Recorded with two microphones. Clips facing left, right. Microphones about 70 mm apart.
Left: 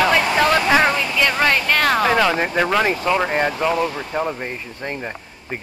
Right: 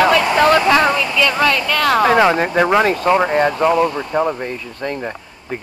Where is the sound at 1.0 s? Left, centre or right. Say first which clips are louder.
Right 3 dB; left.